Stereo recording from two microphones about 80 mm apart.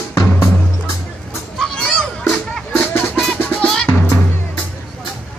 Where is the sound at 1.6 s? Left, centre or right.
Centre.